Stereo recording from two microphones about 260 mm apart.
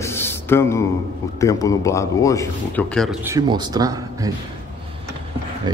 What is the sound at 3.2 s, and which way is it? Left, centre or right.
Speech, centre.